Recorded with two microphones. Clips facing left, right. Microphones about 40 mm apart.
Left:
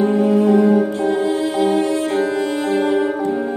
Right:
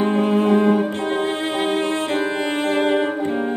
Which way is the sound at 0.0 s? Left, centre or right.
Right.